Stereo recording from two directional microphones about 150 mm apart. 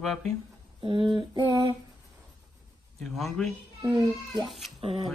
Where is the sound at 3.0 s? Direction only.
Centre (ahead or behind).